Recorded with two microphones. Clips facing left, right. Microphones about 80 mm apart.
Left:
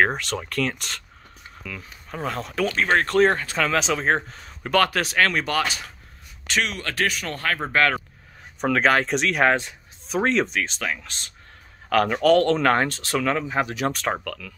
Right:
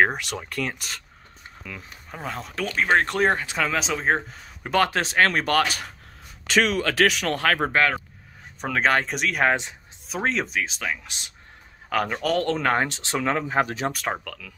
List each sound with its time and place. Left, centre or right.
0.0 s speech: centre
1.6 s speech: right
2.0 s speech: centre
2.7 s speech: centre
4.6 s speech: right
7.0 s speech: right
7.7 s speech: centre
12.8 s speech: centre; by 13.8 s right
14.2 s speech: centre